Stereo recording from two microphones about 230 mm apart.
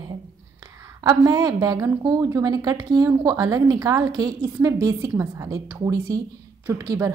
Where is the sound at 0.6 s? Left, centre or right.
Centre.